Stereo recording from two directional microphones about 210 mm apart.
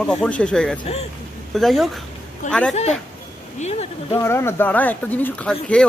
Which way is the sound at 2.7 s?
30° left (ahead or behind).